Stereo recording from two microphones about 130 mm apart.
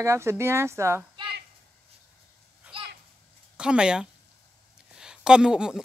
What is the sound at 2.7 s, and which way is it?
Children playing, 10° right (ahead or behind).